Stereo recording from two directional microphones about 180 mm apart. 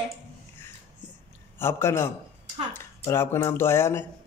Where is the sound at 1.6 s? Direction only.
15° left (ahead or behind).